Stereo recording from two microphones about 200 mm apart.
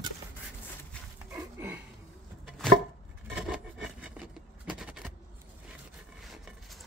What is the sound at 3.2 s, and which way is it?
Rub, 5° right (ahead or behind).